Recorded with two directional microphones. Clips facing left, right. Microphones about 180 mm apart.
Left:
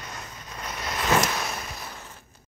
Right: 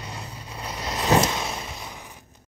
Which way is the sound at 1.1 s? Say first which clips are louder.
Right 3 dB; 20° right (ahead or behind).